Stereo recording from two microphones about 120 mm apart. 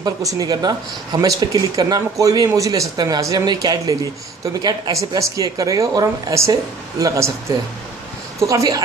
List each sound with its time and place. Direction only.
0.0 s speech: 30° right (ahead or behind)
8.4 s speech: 25° right (ahead or behind)